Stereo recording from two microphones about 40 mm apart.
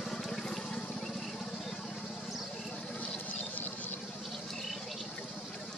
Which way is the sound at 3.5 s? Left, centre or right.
Left.